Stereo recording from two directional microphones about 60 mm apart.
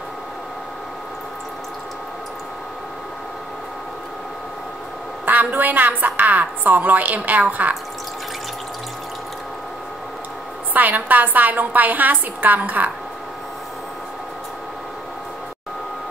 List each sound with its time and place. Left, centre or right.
5.2 s a woman's voice: right
10.7 s a woman's voice: right